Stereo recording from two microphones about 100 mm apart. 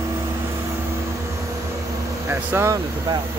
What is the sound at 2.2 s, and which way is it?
Vehicle, 25° right (ahead or behind).